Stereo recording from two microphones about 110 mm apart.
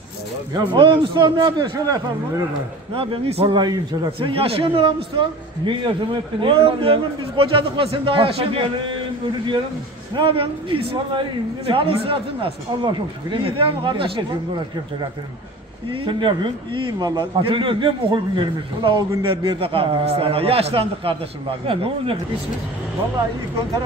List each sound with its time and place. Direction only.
0.7 s a man's voice: 45° right (ahead or behind)
2.9 s a man's voice: 55° right (ahead or behind)
3.4 s a man's voice: 40° right (ahead or behind)
4.3 s a man's voice: 60° right (ahead or behind)
10.1 s a man's voice: 55° right (ahead or behind)
15.9 s a man's voice: 50° right (ahead or behind)